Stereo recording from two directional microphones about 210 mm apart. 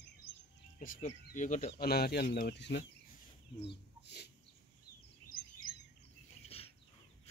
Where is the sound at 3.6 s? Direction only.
55° left (ahead or behind).